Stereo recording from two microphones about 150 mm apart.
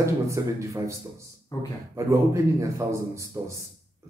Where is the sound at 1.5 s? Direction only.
25° left (ahead or behind).